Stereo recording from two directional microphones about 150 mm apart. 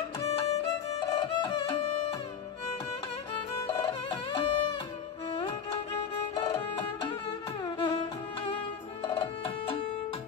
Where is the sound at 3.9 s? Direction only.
30° left (ahead or behind).